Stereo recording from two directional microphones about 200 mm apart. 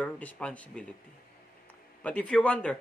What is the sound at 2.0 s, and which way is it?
Speech, 5° left (ahead or behind).